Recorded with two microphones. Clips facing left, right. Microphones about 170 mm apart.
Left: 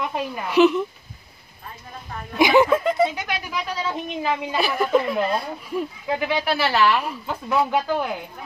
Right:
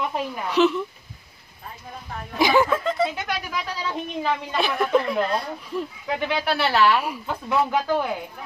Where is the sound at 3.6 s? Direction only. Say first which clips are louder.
Left 2 dB; 5° left (ahead or behind).